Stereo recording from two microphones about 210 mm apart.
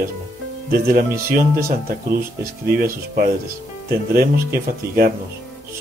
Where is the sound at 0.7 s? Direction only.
45° right (ahead or behind).